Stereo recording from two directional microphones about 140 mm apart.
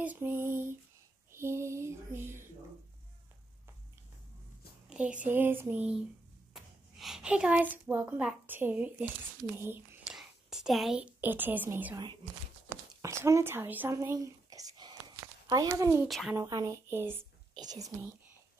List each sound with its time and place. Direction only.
0.0 s speech: 15° right (ahead or behind)
1.3 s a sound: 20° right (ahead or behind)
4.8 s speech: 10° right (ahead or behind)
6.5 s a sound: centre (ahead or behind)
8.5 s speech: 15° right (ahead or behind)
10.1 s a woman's voice: 5° right (ahead or behind)
13.0 s a woman's voice: 20° right (ahead or behind)
16.1 s a woman's voice: centre (ahead or behind)
16.3 s a woman's voice: 25° right (ahead or behind)
17.6 s a woman's voice: 25° right (ahead or behind)